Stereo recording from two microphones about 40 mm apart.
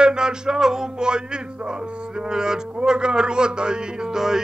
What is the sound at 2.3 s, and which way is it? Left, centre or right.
Speech, centre.